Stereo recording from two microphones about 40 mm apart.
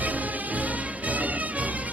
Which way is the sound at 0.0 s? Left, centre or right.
Right.